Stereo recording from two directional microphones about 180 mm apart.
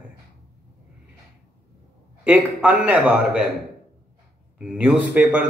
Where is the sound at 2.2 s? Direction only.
10° right (ahead or behind).